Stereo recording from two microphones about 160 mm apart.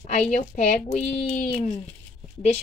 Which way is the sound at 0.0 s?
45° left (ahead or behind).